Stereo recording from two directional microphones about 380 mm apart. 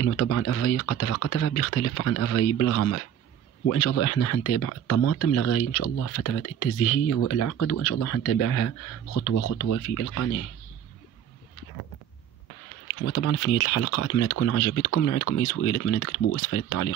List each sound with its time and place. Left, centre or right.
0.0 s speech: left
13.0 s speech: left